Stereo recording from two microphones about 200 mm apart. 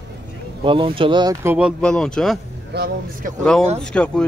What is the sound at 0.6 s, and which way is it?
Speech, 25° right (ahead or behind).